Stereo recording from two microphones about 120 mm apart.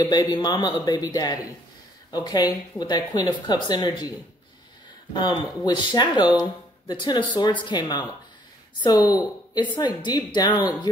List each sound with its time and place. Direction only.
0.0 s speech: 35° left (ahead or behind)
5.1 s speech: 40° left (ahead or behind)